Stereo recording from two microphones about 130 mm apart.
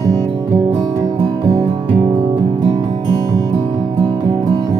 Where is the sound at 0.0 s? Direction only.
30° right (ahead or behind).